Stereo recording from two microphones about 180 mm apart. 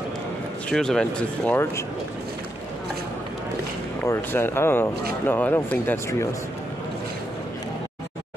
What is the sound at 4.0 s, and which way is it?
Speech, 10° left (ahead or behind).